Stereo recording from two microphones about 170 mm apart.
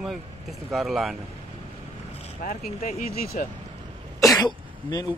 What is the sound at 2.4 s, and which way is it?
Speech, 45° left (ahead or behind).